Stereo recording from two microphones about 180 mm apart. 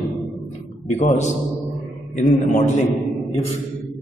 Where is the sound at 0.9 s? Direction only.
40° left (ahead or behind).